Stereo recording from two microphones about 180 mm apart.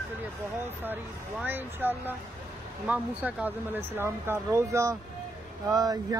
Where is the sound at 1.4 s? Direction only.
10° right (ahead or behind).